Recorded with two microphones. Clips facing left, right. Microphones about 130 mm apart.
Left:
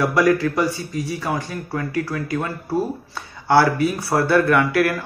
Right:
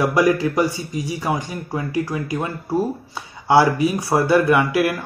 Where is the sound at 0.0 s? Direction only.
20° right (ahead or behind).